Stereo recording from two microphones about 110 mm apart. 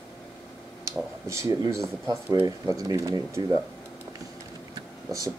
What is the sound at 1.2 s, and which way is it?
Speech, 30° right (ahead or behind).